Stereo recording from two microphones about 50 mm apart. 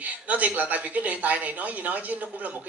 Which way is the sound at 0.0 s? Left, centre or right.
Right.